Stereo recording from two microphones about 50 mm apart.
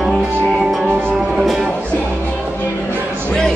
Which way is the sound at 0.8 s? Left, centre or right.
Right.